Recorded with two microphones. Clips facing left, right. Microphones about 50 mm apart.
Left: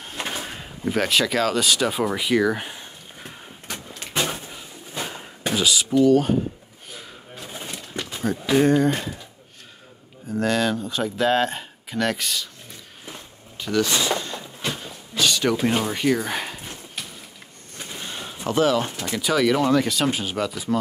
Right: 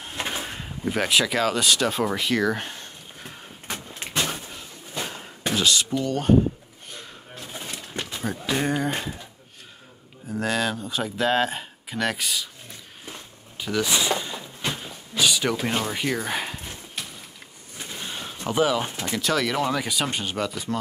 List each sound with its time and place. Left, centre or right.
0.0 s a sound: centre
3.6 s vehicle: centre
4.3 s slam: centre
5.5 s speech: centre
6.9 s a sound: centre
8.1 s speech: centre
10.3 s speech: centre
13.6 s a sound: centre
15.5 s speech: centre
17.7 s a sound: centre
18.5 s speech: centre
19.0 s speech: centre